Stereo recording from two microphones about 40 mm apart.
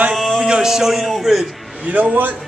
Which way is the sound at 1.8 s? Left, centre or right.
Right.